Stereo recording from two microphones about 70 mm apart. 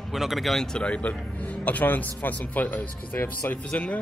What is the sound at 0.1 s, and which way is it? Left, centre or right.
Speech, centre.